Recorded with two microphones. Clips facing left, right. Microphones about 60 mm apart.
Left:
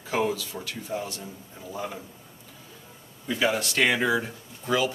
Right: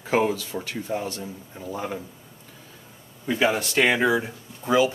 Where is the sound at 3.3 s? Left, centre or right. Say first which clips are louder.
Right 3 dB; right.